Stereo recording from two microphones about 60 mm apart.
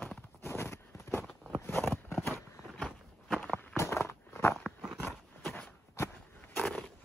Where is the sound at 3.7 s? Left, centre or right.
Left.